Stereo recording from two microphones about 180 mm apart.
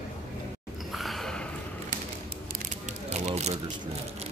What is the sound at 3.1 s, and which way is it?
Speech, 40° right (ahead or behind).